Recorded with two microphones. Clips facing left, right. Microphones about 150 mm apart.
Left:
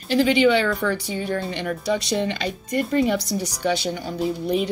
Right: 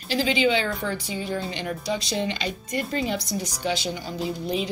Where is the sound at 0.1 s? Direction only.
60° left (ahead or behind).